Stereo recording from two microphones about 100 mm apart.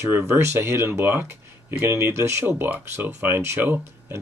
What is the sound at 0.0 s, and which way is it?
Speech, 30° right (ahead or behind).